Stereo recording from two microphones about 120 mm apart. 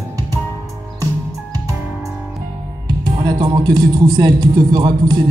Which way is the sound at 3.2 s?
35° right (ahead or behind).